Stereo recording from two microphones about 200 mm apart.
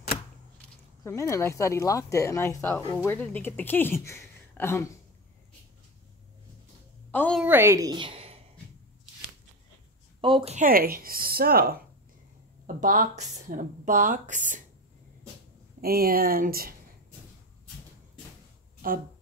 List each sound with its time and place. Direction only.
1.0 s speech: 15° left (ahead or behind)
7.1 s a woman's voice: 5° left (ahead or behind)
7.4 s a woman's voice: 10° right (ahead or behind); by 8.4 s 30° right (ahead or behind)
10.2 s speech: 30° right (ahead or behind)
15.8 s speech: 50° right (ahead or behind)
18.8 s speech: 45° right (ahead or behind)